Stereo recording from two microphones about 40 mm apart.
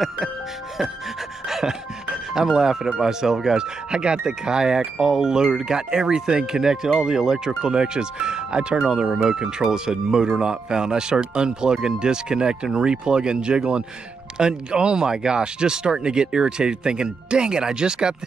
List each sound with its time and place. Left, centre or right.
1.5 s music: centre
2.3 s speech: centre